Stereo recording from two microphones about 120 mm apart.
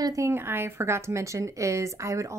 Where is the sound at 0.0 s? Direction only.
25° right (ahead or behind).